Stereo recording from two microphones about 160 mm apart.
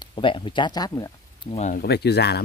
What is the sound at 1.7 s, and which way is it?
Speech, 90° left.